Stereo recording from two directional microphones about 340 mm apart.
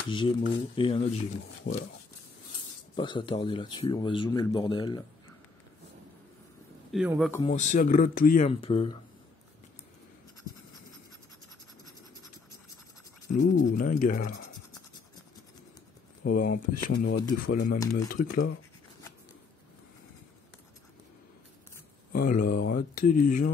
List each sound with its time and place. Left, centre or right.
0.1 s speech: centre
3.0 s speech: centre
6.9 s a man's voice: centre
7.5 s speech: left
13.3 s speech: left
16.3 s speech: left
22.2 s speech: left